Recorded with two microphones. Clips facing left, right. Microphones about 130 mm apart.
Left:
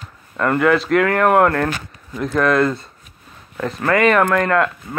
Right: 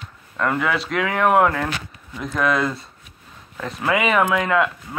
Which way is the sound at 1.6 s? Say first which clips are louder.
Left 4 dB; 45° left (ahead or behind).